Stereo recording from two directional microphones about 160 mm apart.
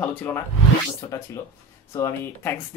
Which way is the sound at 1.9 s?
15° left (ahead or behind).